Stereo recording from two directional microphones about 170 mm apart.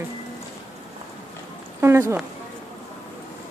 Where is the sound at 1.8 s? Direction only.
15° right (ahead or behind).